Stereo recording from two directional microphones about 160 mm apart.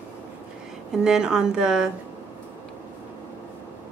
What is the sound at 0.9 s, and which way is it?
A woman's voice, 5° right (ahead or behind).